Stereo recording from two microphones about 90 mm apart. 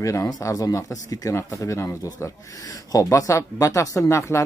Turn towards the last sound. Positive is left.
turn(degrees=35)  # may be behind; listen again after turning